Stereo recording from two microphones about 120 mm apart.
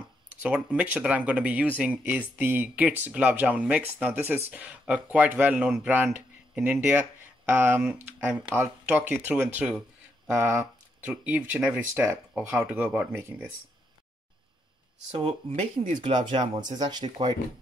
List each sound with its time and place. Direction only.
0.0 s speech: 10° right (ahead or behind)
9.6 s a sound: 10° right (ahead or behind)
10.3 s speech: 20° right (ahead or behind)
16.0 s speech: 45° right (ahead or behind)